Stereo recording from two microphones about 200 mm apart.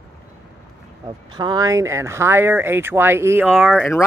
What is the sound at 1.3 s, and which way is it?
Speech, 20° right (ahead or behind).